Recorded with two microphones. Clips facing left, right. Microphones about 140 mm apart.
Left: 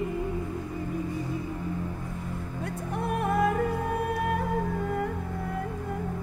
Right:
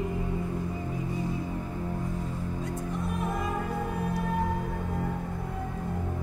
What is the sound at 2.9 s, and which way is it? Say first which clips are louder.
Music: left 7 dB; 65° left (ahead or behind).